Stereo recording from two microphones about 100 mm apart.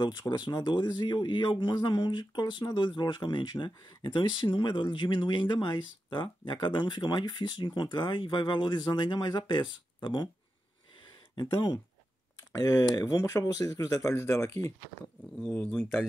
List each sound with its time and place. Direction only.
0.0 s speech: 45° left (ahead or behind)
12.5 s speech: 35° left (ahead or behind)
15.5 s speech: 10° left (ahead or behind)